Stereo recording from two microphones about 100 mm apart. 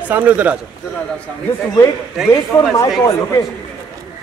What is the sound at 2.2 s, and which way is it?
Speech, 5° right (ahead or behind).